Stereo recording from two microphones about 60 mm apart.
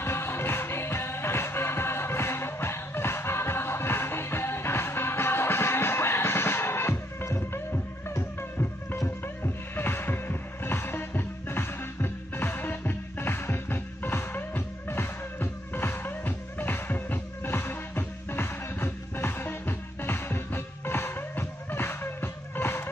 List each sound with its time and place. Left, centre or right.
0.0 s music: left
9.2 s music: left